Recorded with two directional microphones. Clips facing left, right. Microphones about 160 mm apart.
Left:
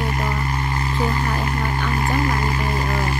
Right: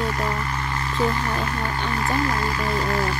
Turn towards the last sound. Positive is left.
turn(degrees=20)  # may be behind; listen again after turning